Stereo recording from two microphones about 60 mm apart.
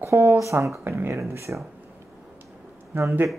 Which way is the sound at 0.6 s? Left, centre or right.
Right.